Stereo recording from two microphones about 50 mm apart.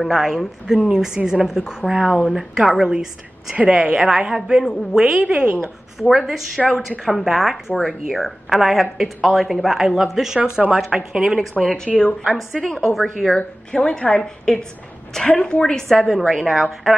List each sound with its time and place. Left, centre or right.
0.0 s a woman's voice: centre
3.5 s a woman's voice: centre
5.3 s a woman's voice: right
6.6 s a woman's voice: centre
11.6 s a woman's voice: centre
11.9 s a woman's voice: left
12.2 s a woman's voice: centre
13.4 s a woman's voice: left
16.0 s speech: centre